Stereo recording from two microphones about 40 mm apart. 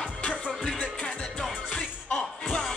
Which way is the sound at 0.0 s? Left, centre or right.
Left.